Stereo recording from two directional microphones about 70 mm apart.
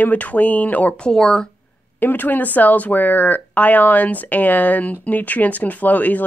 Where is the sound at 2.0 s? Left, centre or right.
Left.